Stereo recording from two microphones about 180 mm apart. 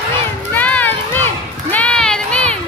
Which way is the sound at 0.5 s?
10° left (ahead or behind).